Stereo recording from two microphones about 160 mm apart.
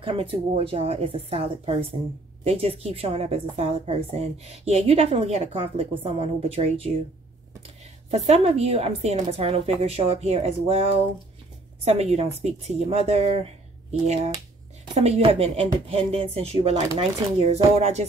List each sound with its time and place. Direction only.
0.0 s a woman's voice: 35° right (ahead or behind)
8.1 s a woman's voice: 40° right (ahead or behind)